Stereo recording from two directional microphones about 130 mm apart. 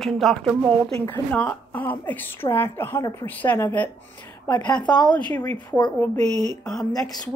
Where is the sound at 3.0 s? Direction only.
30° left (ahead or behind).